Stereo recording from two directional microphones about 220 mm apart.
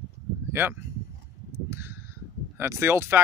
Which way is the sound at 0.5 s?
10° right (ahead or behind).